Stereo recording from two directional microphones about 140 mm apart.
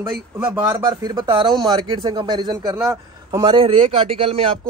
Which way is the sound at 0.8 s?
35° right (ahead or behind).